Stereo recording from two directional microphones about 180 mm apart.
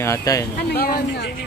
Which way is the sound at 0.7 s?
60° left (ahead or behind).